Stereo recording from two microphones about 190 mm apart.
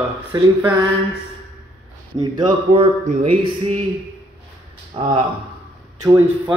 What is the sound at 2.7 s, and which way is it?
Speech, 35° right (ahead or behind).